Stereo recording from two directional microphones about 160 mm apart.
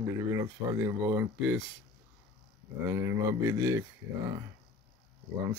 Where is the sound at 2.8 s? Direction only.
20° right (ahead or behind).